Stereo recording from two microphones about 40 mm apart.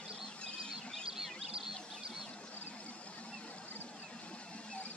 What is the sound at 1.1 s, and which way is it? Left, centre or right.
Bird, centre.